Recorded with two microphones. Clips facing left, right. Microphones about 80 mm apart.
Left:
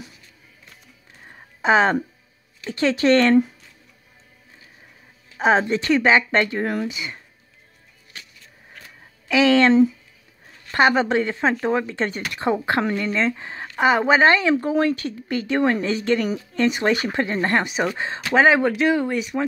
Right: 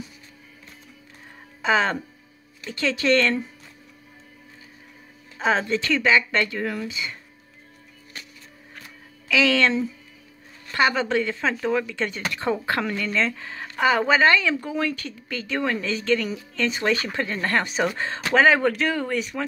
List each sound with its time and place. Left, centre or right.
1.6 s speech: left
5.4 s speech: left
6.9 s speech: left
9.3 s speech: left